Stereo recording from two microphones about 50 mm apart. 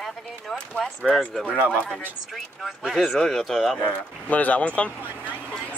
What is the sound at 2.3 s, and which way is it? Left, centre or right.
Speech, centre.